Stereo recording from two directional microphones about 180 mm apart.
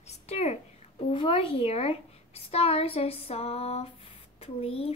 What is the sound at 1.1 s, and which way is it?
A woman's voice, 30° left (ahead or behind).